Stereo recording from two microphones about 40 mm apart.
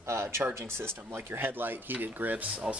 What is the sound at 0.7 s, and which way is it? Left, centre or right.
Speech, right.